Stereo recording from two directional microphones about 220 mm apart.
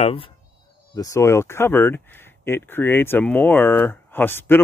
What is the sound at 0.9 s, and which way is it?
Speech, 15° left (ahead or behind).